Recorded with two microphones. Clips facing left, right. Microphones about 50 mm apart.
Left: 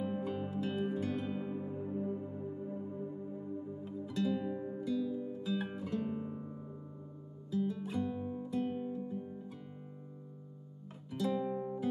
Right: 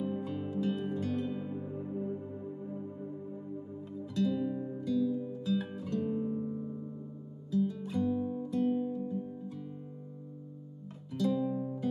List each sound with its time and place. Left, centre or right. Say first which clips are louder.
0.0 s music: right 1 dB; centre
4.1 s music: right 3 dB; centre
7.5 s guitar: right 3 dB; centre
11.1 s music: right 3 dB; centre